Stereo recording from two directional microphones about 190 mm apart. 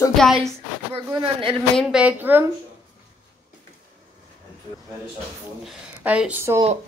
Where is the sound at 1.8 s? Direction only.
5° right (ahead or behind).